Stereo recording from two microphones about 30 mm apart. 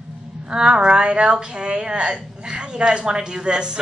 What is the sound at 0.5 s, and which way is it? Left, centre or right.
A woman's voice, right.